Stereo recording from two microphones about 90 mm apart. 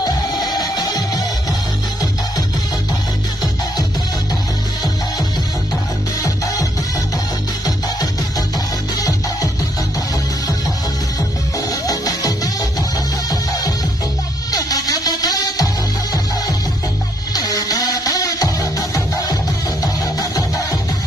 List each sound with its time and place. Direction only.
0.0 s music: 45° left (ahead or behind)
6.2 s music: 40° left (ahead or behind)
11.1 s music: 40° left (ahead or behind)